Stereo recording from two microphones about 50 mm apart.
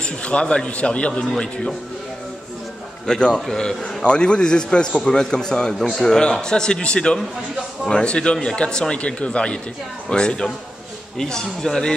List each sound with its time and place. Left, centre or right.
0.0 s a man's voice: left
3.1 s a man's voice: centre